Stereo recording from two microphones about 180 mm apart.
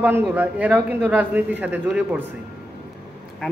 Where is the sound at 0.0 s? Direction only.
10° right (ahead or behind).